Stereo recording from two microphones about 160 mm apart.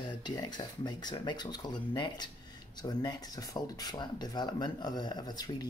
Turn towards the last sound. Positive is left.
turn(degrees=25)  # may be behind; listen again after turning